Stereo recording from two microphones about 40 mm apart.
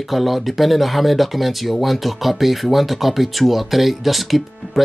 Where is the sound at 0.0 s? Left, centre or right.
Centre.